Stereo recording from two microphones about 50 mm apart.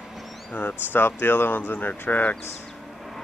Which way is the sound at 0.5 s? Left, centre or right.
Left.